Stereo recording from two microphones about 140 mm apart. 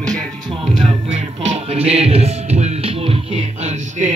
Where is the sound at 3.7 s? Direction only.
60° right (ahead or behind).